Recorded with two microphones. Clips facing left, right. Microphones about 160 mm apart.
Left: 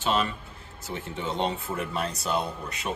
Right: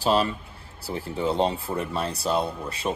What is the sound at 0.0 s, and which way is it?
Speech, 35° right (ahead or behind).